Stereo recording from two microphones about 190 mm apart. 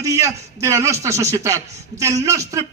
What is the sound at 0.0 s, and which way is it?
A man's voice, 15° right (ahead or behind).